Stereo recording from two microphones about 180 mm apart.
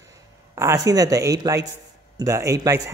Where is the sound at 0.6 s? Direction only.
15° right (ahead or behind).